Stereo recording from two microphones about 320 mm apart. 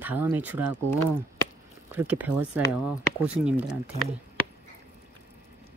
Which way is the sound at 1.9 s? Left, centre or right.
Centre.